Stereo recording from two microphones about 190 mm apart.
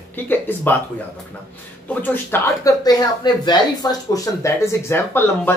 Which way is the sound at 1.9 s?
10° left (ahead or behind).